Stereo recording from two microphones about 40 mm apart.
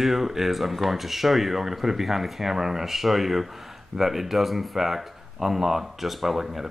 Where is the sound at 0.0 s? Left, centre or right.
Centre.